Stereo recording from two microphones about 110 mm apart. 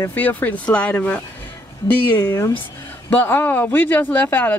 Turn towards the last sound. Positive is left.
turn(degrees=15)  # may be behind; listen again after turning